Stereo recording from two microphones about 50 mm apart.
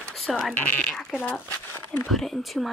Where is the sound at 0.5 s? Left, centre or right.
Left.